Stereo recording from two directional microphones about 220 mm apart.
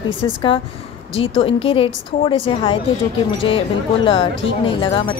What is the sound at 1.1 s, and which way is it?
A woman's voice, 25° left (ahead or behind).